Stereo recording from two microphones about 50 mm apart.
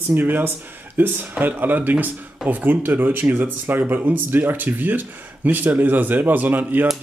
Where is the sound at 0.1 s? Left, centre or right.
Right.